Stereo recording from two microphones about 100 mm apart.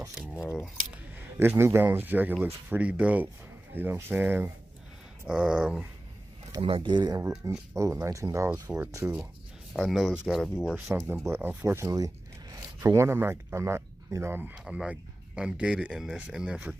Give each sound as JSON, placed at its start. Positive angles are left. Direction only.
{"t": 1.1, "sound": "speech", "side_deg": -25}
{"t": 5.2, "sound": "speech", "side_deg": -10}
{"t": 6.6, "sound": "speech", "side_deg": -55}
{"t": 7.2, "sound": "speech", "side_deg": -35}
{"t": 8.7, "sound": "speech", "side_deg": -20}
{"t": 9.8, "sound": "speech", "side_deg": 0}
{"t": 10.9, "sound": "speech", "side_deg": -20}
{"t": 11.9, "sound": "zipper", "side_deg": -35}
{"t": 12.8, "sound": "speech", "side_deg": -30}
{"t": 14.6, "sound": "speech", "side_deg": -5}